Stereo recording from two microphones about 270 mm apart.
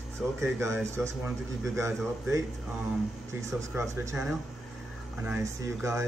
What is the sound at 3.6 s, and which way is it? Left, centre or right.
Speech, centre.